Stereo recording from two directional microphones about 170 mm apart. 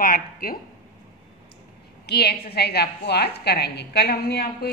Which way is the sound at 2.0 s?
70° left (ahead or behind).